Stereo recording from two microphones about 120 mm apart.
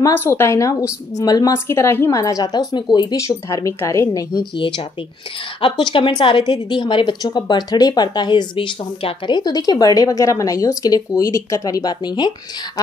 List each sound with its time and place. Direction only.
0.0 s a woman's voice: 20° left (ahead or behind)
4.6 s a woman's voice: 45° left (ahead or behind); by 12.9 s 25° left (ahead or behind)